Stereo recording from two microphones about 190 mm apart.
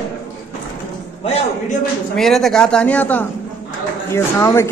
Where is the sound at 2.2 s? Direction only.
Centre (ahead or behind).